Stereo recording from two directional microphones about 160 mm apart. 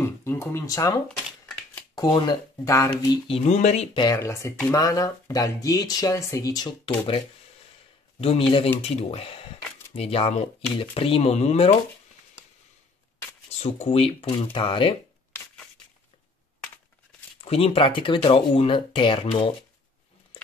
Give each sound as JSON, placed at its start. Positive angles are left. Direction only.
{"t": 0.0, "sound": "speech", "side_deg": 15}
{"t": 2.0, "sound": "speech", "side_deg": 25}
{"t": 3.3, "sound": "speech", "side_deg": 40}
{"t": 4.0, "sound": "speech", "side_deg": 20}
{"t": 8.2, "sound": "speech", "side_deg": 35}
{"t": 13.5, "sound": "speech", "side_deg": 40}
{"t": 17.4, "sound": "speech", "side_deg": 40}